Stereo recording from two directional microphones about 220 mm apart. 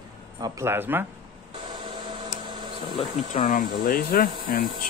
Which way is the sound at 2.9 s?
35° left (ahead or behind).